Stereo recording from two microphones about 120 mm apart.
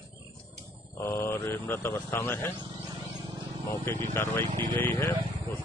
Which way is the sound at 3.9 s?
20° left (ahead or behind).